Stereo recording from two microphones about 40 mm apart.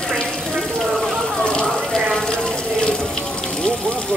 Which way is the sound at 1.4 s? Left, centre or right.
Left.